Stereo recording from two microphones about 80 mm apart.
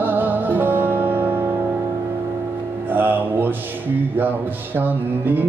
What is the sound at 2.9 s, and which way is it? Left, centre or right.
Music, right.